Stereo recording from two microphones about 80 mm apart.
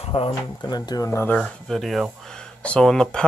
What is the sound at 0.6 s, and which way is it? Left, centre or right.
Speech, left.